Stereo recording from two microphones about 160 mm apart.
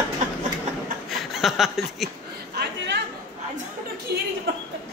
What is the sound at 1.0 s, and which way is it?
Chuckle, centre (ahead or behind).